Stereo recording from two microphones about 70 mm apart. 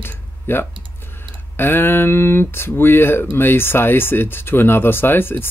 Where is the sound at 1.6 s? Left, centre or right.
Left.